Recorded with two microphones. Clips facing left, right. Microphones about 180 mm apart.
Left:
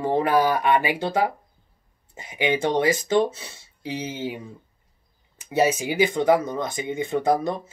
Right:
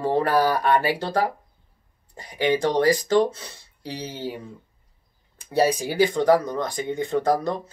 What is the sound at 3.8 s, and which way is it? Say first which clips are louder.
Speech: left 2 dB; 20° left (ahead or behind).